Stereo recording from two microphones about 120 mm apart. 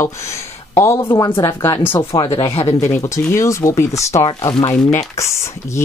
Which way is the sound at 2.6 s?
25° left (ahead or behind).